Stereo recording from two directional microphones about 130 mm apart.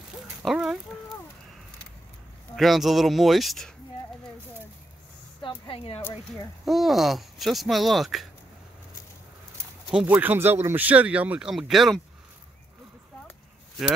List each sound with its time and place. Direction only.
0.4 s speech: 5° right (ahead or behind)
2.5 s speech: centre (ahead or behind)
5.4 s a sound: 40° left (ahead or behind)
6.6 s speech: centre (ahead or behind)
9.8 s speech: 5° right (ahead or behind)